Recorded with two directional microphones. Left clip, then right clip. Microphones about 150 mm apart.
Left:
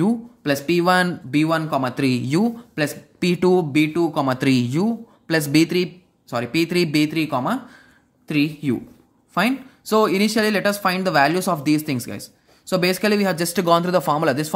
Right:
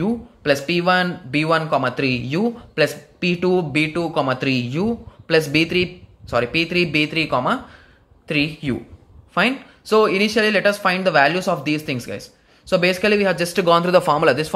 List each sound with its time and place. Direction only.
0.4 s speech: 25° left (ahead or behind); by 1.1 s 40° left (ahead or behind)
1.3 s speech: 20° left (ahead or behind)
2.0 s speech: 45° left (ahead or behind)
2.8 s speech: 20° left (ahead or behind)
3.2 s speech: 40° left (ahead or behind)
3.7 s speech: 20° left (ahead or behind)
4.4 s speech: 45° left (ahead or behind)
4.8 s speech: 30° left (ahead or behind)
6.2 s speech: 20° left (ahead or behind)
6.6 s speech: 40° left (ahead or behind)
7.1 s speech: 20° left (ahead or behind)